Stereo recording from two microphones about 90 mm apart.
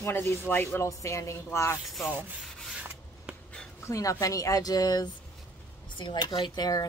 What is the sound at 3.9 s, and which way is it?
A woman's voice, 40° left (ahead or behind).